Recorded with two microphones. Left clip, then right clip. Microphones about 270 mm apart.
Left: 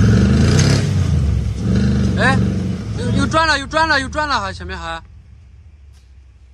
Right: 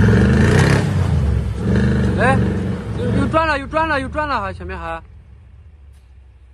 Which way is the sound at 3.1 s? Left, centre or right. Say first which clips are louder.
Left 2 dB; centre.